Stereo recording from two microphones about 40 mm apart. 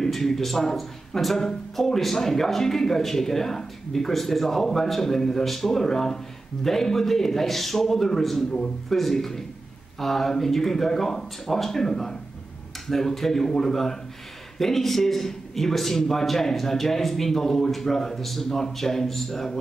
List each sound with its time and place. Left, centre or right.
0.0 s a man's voice: centre